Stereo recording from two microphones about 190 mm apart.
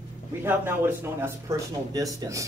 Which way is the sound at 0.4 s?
10° right (ahead or behind).